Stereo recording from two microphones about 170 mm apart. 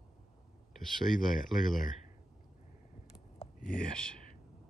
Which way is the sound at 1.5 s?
Centre (ahead or behind).